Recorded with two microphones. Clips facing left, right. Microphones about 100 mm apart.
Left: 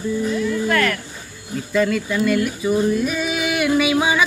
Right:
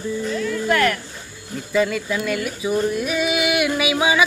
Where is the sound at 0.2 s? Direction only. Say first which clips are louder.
Left 3 dB; 5° left (ahead or behind).